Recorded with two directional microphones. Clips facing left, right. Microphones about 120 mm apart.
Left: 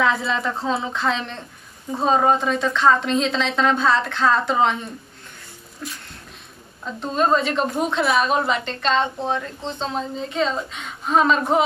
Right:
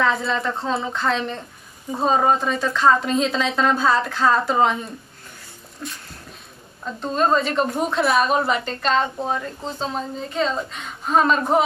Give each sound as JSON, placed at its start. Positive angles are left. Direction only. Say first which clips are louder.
{"t": 0.0, "sound": "a woman's voice", "louder": "even", "side_deg": 0}
{"t": 6.8, "sound": "a woman's voice", "louder": "even", "side_deg": 0}